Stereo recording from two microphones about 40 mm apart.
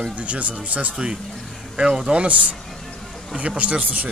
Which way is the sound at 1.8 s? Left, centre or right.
Centre.